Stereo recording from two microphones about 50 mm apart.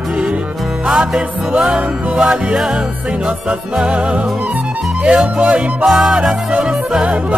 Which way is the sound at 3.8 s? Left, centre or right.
Centre.